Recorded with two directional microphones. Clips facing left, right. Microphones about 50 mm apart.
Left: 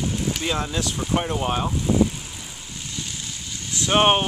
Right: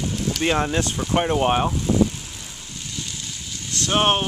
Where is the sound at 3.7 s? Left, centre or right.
Centre.